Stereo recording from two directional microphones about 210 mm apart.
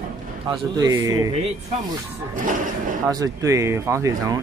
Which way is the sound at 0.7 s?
15° right (ahead or behind).